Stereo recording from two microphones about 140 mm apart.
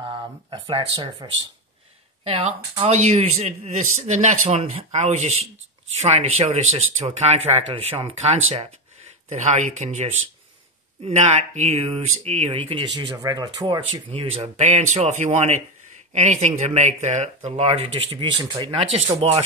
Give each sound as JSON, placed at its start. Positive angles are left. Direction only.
{"t": 0.1, "sound": "speech", "side_deg": -35}
{"t": 11.1, "sound": "speech", "side_deg": -55}
{"t": 12.5, "sound": "speech", "side_deg": -35}
{"t": 14.4, "sound": "speech", "side_deg": -55}